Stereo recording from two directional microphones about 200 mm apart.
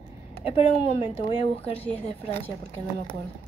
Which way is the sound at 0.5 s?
30° left (ahead or behind).